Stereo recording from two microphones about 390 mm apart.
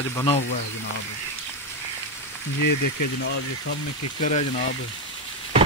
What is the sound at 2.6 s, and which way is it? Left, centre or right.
Speech, left.